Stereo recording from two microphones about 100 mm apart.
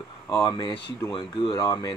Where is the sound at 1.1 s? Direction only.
60° left (ahead or behind).